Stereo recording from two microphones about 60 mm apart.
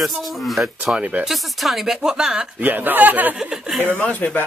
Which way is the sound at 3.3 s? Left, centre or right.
Centre.